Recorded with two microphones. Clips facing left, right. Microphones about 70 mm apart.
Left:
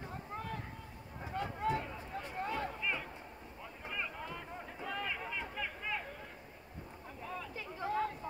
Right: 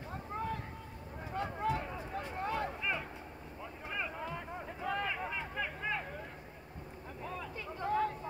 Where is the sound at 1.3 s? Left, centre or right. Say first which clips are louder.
Right 1 dB; centre.